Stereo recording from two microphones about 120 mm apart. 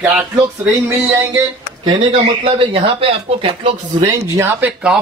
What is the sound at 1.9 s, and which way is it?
Speech, 45° right (ahead or behind).